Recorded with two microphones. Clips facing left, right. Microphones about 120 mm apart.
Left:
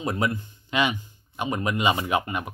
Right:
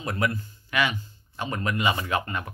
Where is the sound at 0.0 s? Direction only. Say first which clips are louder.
Left 2 dB; 20° left (ahead or behind).